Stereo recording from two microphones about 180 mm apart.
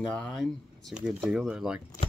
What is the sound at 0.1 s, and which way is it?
Speech, 5° left (ahead or behind).